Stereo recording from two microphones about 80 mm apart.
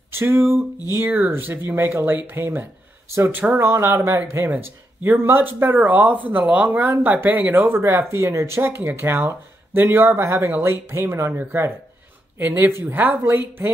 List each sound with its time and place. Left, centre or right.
0.1 s speech: right